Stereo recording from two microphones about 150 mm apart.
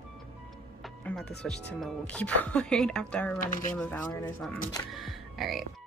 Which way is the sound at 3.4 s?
60° left (ahead or behind).